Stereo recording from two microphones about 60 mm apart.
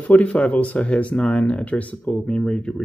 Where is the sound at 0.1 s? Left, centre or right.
Left.